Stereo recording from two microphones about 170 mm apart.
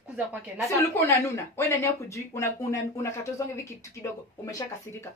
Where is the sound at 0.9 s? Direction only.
15° left (ahead or behind).